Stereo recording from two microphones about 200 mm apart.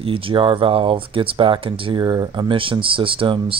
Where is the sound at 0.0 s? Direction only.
25° right (ahead or behind).